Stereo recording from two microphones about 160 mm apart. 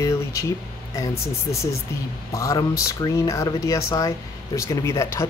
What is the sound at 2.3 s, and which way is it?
Speech, 20° left (ahead or behind).